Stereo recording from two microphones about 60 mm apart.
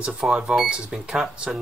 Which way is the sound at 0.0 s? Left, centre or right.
Centre.